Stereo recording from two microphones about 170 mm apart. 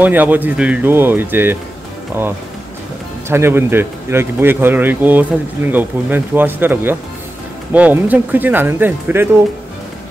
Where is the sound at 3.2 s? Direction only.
15° right (ahead or behind).